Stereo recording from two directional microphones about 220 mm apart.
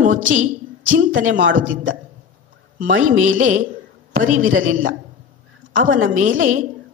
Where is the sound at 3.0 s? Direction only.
35° right (ahead or behind).